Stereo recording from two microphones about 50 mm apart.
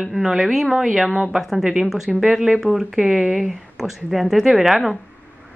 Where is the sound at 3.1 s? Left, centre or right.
Right.